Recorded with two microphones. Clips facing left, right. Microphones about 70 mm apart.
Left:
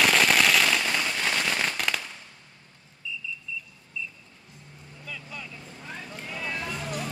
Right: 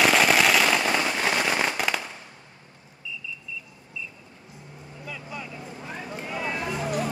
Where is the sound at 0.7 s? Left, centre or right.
Right.